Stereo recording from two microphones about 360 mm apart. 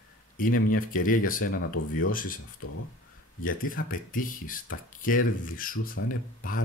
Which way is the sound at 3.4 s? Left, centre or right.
Left.